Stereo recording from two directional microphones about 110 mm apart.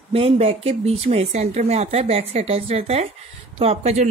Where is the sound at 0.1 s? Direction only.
65° right (ahead or behind).